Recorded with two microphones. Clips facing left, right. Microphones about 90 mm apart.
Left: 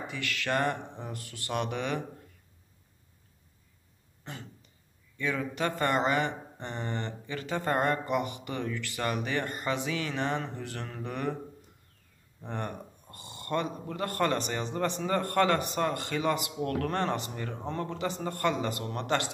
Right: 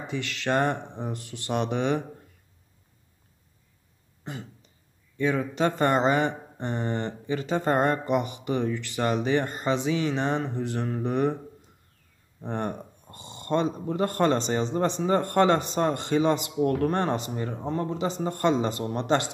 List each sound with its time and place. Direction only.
0.0 s speech: 25° right (ahead or behind)
4.2 s a sound: 15° right (ahead or behind)
5.1 s speech: 25° right (ahead or behind)
12.4 s speech: 25° right (ahead or behind)